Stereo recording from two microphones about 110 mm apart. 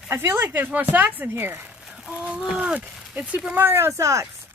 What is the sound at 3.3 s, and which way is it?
Speech, 15° right (ahead or behind).